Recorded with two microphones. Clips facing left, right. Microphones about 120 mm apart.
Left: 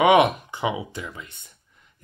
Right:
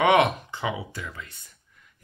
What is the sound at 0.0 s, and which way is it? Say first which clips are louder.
Speech: left 3 dB; 15° left (ahead or behind).